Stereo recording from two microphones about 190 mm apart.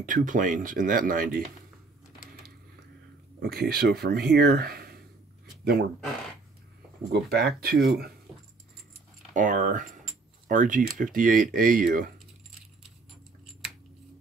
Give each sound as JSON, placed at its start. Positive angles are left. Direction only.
{"t": 0.0, "sound": "speech", "side_deg": -45}
{"t": 3.3, "sound": "speech", "side_deg": -55}
{"t": 7.1, "sound": "speech", "side_deg": -55}
{"t": 9.3, "sound": "speech", "side_deg": -40}